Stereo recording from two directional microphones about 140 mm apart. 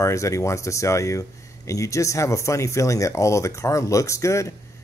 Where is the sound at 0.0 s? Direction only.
20° left (ahead or behind).